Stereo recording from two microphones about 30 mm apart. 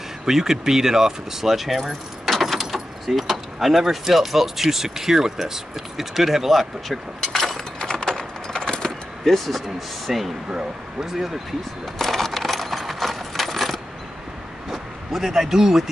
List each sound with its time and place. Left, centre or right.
0.2 s speech: centre
6.6 s speech: centre
7.8 s a sound: left
9.2 s speech: centre
10.0 s speech: centre
12.0 s coin: centre
14.7 s a sound: centre